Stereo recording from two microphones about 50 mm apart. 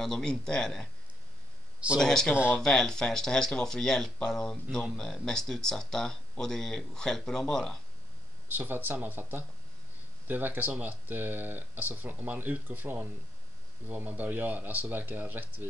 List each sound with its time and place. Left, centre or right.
0.0 s speech: centre
2.0 s speech: centre
8.5 s speech: right